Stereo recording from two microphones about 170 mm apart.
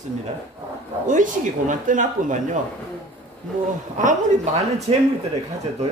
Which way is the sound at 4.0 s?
45° right (ahead or behind).